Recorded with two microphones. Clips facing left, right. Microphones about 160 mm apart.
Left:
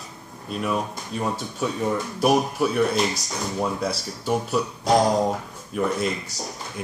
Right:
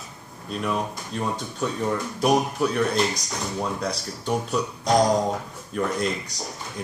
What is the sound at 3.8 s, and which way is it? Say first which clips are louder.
Speech: left 2 dB; 5° left (ahead or behind).